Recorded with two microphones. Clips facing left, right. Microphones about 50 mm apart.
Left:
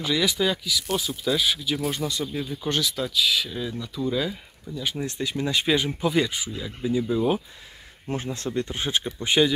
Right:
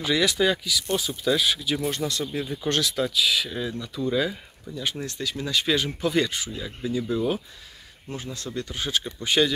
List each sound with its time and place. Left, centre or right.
0.0 s speech: centre
5.0 s speech: left
8.1 s speech: left
9.0 s speech: centre